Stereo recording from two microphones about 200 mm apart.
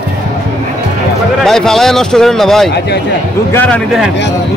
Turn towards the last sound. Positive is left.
turn(degrees=0)  # may be behind; listen again after turning